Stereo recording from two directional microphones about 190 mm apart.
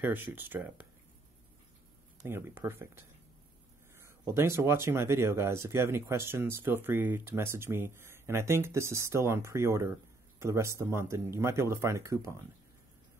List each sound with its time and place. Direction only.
0.0 s speech: 10° right (ahead or behind)
2.2 s speech: 10° right (ahead or behind)